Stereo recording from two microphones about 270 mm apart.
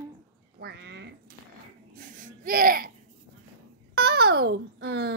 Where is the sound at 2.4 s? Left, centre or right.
Right.